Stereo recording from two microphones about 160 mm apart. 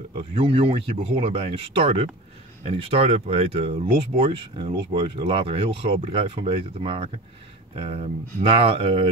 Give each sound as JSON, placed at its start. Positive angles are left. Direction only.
{"t": 0.2, "sound": "speech", "side_deg": -35}